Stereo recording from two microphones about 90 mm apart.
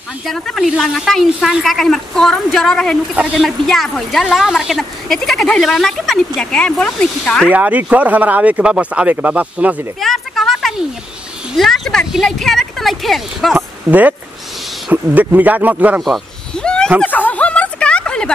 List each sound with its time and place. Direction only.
0.3 s speech: centre (ahead or behind)
7.5 s speech: 15° right (ahead or behind)
9.9 s a sound: centre (ahead or behind)
11.5 s speech: centre (ahead or behind)
13.8 s speech: 20° right (ahead or behind)
16.0 s a sound: 5° left (ahead or behind)